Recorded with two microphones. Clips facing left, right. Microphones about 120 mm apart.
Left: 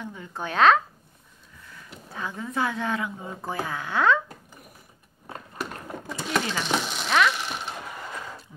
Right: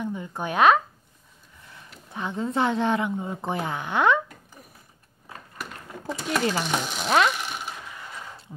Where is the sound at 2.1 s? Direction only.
25° right (ahead or behind).